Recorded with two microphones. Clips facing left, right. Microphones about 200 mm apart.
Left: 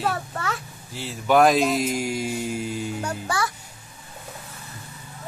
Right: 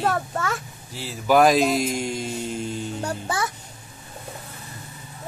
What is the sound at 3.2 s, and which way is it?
Speech, 20° right (ahead or behind).